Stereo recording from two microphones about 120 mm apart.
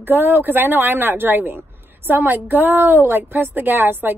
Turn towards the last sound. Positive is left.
turn(degrees=-15)  # may be behind; listen again after turning